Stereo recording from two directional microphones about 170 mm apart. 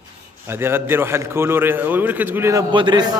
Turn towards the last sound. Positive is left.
turn(degrees=-25)  # may be behind; listen again after turning